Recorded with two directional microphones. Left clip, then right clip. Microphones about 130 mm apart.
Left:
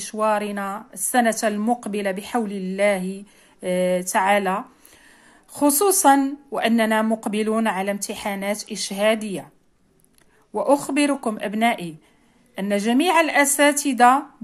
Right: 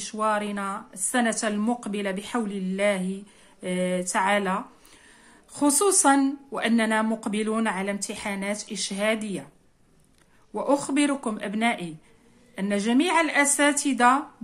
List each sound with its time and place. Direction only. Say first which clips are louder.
0.0 s speech: left 4 dB; 35° left (ahead or behind)
10.5 s speech: left 5 dB; 40° left (ahead or behind)